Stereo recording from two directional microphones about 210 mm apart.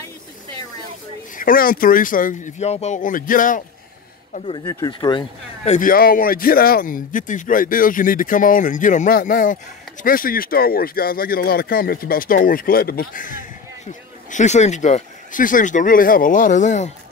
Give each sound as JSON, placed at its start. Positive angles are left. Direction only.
{"t": 1.3, "sound": "speech", "side_deg": 40}
{"t": 4.6, "sound": "speech", "side_deg": 15}
{"t": 5.7, "sound": "speech", "side_deg": 40}